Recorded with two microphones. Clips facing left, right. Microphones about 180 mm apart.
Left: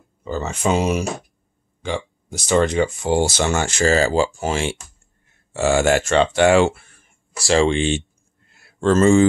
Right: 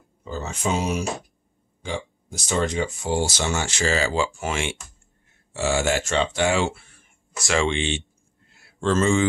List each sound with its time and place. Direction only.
0.3 s speech: 65° left (ahead or behind); by 4.7 s 35° left (ahead or behind)
5.5 s speech: 55° left (ahead or behind)
7.3 s speech: 35° left (ahead or behind)